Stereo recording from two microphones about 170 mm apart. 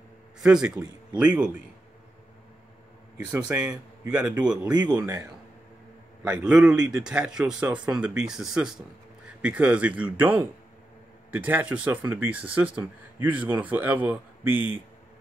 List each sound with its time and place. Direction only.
0.4 s a man's voice: 5° right (ahead or behind)
3.4 s speech: 5° right (ahead or behind)
4.9 s a man's voice: 20° right (ahead or behind)
6.2 s a man's voice: 5° right (ahead or behind)